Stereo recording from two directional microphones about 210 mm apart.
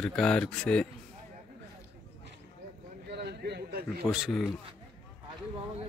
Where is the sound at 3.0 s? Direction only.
50° right (ahead or behind).